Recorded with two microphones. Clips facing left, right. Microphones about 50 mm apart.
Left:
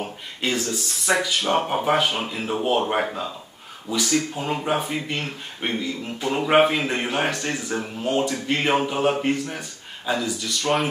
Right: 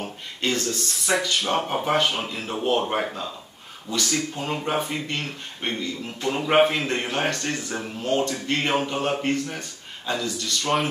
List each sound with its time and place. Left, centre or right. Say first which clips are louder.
0.0 s speech: even; centre